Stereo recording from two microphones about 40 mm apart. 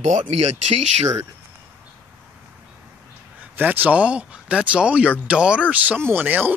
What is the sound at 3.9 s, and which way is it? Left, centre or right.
Speech, right.